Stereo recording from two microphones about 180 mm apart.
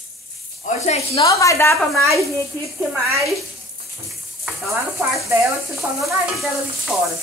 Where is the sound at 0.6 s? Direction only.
40° left (ahead or behind).